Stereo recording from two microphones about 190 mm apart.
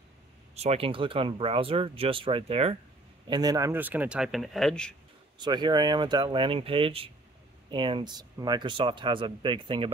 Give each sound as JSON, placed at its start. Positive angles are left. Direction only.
{"t": 0.6, "sound": "speech", "side_deg": -30}
{"t": 3.3, "sound": "speech", "side_deg": -20}
{"t": 5.4, "sound": "speech", "side_deg": -20}